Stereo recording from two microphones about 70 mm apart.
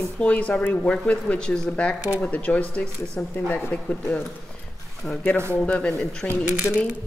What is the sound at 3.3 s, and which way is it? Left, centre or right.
Speech, left.